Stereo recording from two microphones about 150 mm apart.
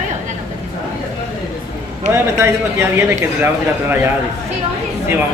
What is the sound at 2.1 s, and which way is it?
A man's voice, 20° right (ahead or behind).